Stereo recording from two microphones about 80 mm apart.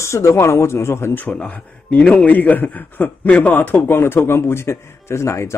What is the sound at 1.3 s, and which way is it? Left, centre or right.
A man's voice, centre.